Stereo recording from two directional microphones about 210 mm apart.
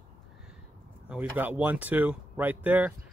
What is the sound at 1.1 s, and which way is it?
Speech, 10° right (ahead or behind).